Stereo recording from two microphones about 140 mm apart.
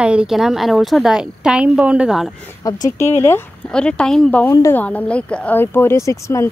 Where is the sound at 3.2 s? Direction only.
15° left (ahead or behind).